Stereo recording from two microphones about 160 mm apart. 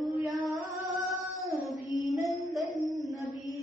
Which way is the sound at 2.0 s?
Centre (ahead or behind).